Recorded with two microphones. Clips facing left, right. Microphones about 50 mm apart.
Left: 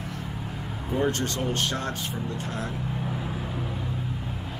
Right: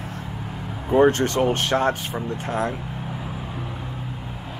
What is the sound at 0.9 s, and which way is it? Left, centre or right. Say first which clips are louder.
Speech: right 9 dB; right.